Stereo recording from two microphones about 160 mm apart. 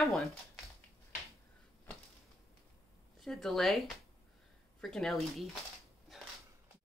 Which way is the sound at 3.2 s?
Centre (ahead or behind).